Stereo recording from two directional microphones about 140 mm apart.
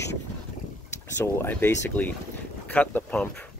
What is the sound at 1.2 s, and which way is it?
Speech, 15° left (ahead or behind).